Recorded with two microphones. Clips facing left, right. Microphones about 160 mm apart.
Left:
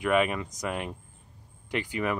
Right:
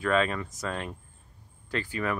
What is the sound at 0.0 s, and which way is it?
Speech, 15° left (ahead or behind).